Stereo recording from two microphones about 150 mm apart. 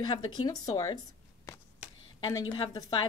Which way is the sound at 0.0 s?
30° left (ahead or behind).